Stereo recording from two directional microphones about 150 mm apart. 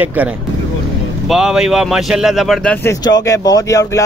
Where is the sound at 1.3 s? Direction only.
5° right (ahead or behind).